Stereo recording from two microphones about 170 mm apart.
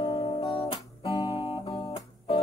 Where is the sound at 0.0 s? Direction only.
30° left (ahead or behind).